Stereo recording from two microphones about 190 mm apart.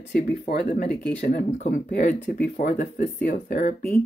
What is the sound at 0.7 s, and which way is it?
Speech, 50° left (ahead or behind).